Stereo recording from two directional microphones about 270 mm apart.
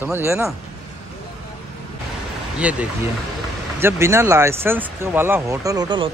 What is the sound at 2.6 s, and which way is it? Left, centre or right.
Speech, centre.